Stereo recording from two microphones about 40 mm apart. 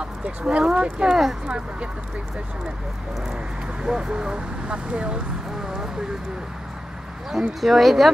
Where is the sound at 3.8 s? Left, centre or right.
Right.